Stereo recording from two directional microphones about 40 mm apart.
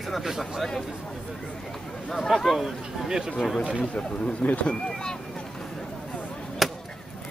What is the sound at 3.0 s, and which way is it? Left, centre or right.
Speech, centre.